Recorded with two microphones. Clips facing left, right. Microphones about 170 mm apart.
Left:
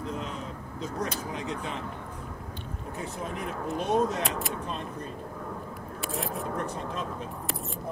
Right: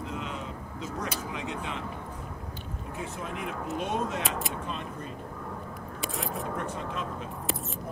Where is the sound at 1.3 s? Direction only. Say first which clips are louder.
Left 1 dB; 40° left (ahead or behind).